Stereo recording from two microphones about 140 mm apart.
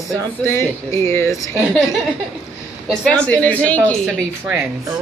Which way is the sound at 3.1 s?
10° left (ahead or behind).